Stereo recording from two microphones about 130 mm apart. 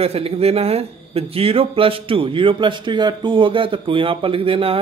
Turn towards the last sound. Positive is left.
turn(degrees=-45)  # may be behind; listen again after turning